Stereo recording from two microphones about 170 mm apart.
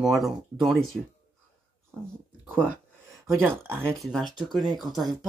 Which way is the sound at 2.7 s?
20° right (ahead or behind).